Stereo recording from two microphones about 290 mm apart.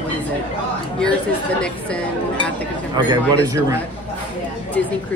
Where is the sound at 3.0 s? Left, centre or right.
Centre.